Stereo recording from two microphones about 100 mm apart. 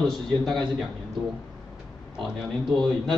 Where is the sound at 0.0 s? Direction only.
5° left (ahead or behind).